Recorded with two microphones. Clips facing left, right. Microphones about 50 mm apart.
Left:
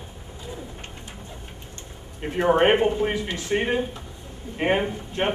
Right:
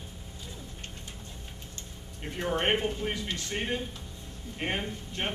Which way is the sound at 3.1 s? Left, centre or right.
Left.